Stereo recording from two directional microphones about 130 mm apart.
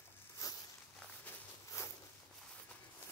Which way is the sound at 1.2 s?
25° left (ahead or behind).